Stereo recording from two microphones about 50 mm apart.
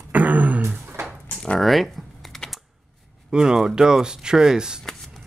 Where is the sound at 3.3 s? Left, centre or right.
Centre.